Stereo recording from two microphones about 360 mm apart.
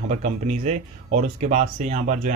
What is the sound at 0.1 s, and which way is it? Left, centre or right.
Speech, centre.